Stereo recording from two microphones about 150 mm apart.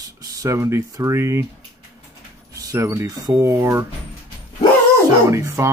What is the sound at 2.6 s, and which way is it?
Speech, 20° right (ahead or behind).